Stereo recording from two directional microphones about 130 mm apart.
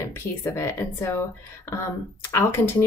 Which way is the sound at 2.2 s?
20° left (ahead or behind).